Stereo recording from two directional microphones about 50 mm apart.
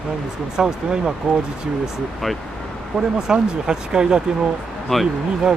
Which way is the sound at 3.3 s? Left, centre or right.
Centre.